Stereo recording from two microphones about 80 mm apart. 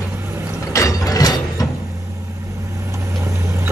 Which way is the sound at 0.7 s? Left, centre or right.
Left.